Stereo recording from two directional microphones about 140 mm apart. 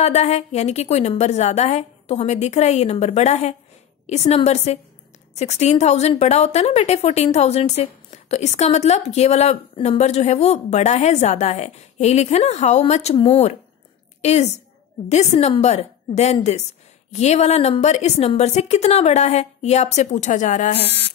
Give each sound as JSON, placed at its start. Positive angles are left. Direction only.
{"t": 0.0, "sound": "a woman's voice", "side_deg": 55}